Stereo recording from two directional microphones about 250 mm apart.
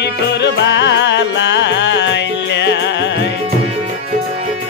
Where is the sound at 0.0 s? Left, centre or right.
Left.